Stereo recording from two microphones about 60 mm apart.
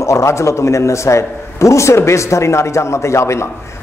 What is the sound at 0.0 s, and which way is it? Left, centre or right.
Speech, left.